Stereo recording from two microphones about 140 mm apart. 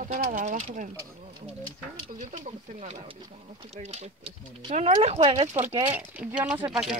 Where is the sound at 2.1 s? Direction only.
65° right (ahead or behind).